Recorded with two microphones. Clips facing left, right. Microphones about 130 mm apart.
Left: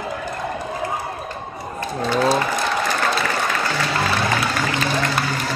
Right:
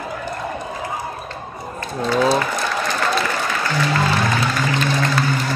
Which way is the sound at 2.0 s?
20° left (ahead or behind).